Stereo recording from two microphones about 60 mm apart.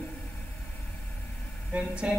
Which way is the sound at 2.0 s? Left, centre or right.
Centre.